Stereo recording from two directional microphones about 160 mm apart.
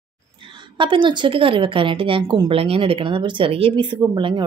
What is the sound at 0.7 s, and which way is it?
A woman's voice, 30° right (ahead or behind).